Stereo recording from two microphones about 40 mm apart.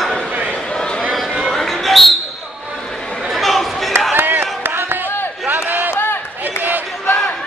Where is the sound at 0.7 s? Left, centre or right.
Centre.